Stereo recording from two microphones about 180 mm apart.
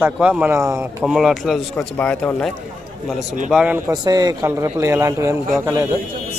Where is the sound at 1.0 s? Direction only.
Centre (ahead or behind).